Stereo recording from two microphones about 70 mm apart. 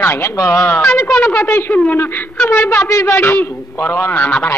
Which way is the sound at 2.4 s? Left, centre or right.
Left.